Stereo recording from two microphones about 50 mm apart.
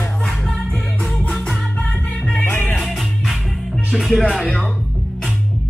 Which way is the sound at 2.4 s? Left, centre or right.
Left.